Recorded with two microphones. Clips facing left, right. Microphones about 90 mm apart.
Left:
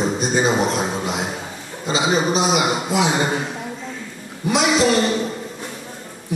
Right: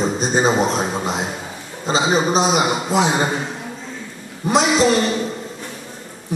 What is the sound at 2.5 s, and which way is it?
Speech, 35° right (ahead or behind).